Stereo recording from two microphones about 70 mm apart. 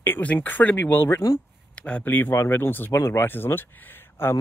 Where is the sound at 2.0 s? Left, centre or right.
Left.